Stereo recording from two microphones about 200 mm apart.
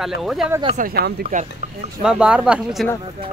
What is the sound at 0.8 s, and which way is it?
Speech, 50° right (ahead or behind).